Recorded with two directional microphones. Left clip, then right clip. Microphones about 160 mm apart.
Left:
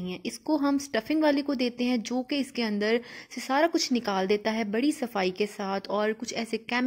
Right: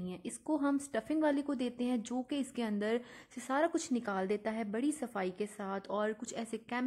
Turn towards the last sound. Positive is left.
turn(degrees=25)  # may be behind; listen again after turning